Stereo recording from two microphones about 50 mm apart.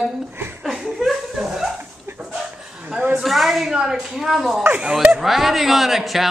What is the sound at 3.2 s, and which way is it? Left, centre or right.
A woman's voice, centre.